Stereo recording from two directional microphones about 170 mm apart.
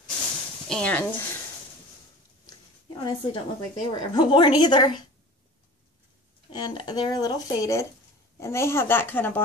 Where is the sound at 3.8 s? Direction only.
30° left (ahead or behind).